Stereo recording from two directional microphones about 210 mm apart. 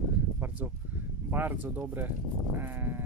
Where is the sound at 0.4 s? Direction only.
10° right (ahead or behind).